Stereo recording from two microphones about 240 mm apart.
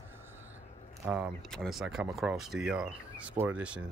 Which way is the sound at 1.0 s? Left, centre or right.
Centre.